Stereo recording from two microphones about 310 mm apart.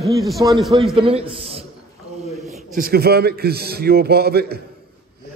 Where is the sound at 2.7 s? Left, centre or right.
Right.